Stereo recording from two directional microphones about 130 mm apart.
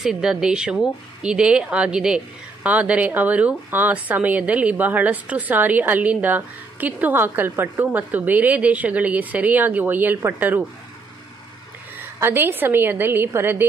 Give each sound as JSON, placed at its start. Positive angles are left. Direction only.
{"t": 0.0, "sound": "speech", "side_deg": -5}
{"t": 12.0, "sound": "speech", "side_deg": -15}